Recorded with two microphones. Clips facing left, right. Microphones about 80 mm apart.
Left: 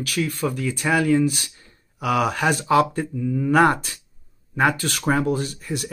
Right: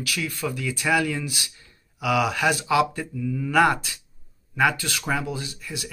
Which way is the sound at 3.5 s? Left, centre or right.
Left.